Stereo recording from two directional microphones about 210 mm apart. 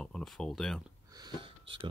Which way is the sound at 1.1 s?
20° right (ahead or behind).